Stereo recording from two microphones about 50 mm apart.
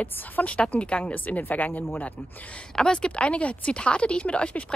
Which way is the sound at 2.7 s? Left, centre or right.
Centre.